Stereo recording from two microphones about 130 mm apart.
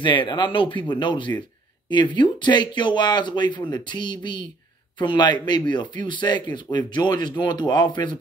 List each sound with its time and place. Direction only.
0.0 s speech: 40° left (ahead or behind)